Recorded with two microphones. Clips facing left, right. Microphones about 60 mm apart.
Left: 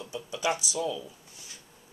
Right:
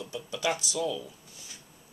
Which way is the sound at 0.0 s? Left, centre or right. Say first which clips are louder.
Even; centre.